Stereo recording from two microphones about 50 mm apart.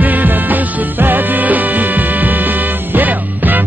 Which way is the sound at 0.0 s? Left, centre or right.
Right.